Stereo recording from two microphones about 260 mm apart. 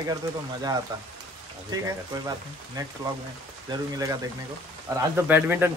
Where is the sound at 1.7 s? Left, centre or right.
Centre.